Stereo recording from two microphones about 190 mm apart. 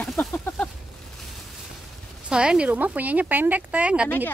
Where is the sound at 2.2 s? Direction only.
5° right (ahead or behind).